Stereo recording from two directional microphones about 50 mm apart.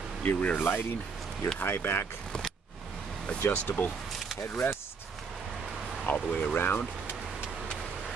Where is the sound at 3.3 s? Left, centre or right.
Left.